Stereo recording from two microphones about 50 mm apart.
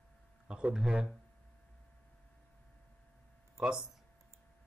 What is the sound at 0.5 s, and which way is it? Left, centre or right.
Speech, centre.